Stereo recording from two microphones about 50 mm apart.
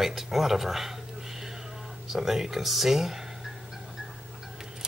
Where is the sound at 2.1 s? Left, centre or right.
Centre.